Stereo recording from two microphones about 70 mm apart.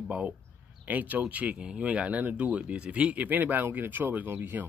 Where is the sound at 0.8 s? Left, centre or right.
Right.